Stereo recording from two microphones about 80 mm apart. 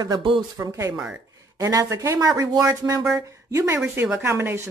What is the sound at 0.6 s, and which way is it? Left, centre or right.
A woman's voice, right.